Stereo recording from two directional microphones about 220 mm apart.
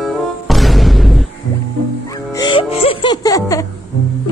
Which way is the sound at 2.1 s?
20° left (ahead or behind).